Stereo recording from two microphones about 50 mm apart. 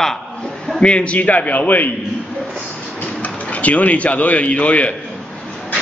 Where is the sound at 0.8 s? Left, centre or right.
Left.